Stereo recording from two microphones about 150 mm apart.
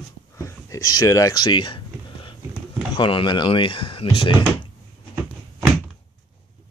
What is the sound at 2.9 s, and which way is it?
Speech, 35° left (ahead or behind).